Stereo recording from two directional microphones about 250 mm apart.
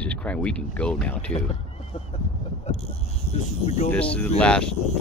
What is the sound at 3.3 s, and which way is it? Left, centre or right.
Speech, left.